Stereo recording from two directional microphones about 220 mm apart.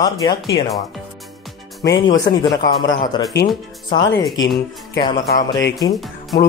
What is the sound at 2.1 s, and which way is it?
Speech, 50° left (ahead or behind).